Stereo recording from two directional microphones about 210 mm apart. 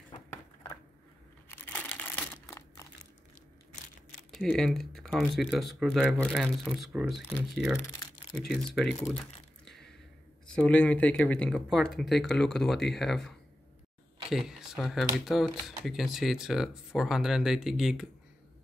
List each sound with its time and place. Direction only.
0.1 s a sound: 20° left (ahead or behind)
1.5 s crumpling: 5° left (ahead or behind)
4.3 s speech: centre (ahead or behind)
10.4 s speech: 5° left (ahead or behind)
14.3 s speech: centre (ahead or behind)